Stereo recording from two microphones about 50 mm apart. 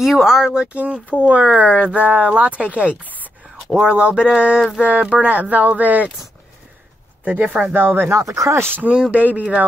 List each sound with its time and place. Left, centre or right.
0.0 s a sound: centre
1.2 s speech: right
2.0 s speech: right
3.7 s a sound: centre
4.6 s speech: right
7.2 s speech: right
7.6 s speech: right
8.1 s speech: right
9.1 s speech: right